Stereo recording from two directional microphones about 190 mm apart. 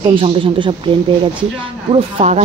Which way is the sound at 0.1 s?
25° right (ahead or behind).